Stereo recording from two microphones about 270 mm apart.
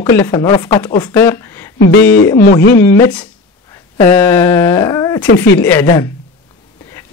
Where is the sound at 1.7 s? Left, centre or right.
Left.